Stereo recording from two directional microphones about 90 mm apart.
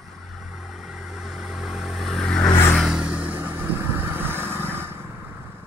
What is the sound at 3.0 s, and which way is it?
Vehicle, 15° right (ahead or behind).